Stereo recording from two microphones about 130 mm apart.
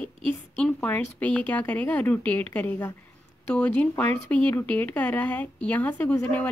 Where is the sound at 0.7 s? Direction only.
10° left (ahead or behind).